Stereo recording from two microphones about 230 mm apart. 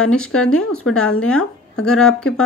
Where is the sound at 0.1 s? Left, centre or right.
Centre.